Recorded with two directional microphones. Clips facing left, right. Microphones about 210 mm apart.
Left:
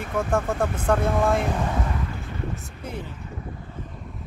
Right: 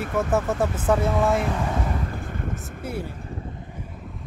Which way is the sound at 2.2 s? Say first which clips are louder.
Right 1 dB; 50° right (ahead or behind).